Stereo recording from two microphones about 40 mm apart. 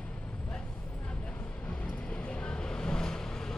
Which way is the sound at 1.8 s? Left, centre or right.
Left.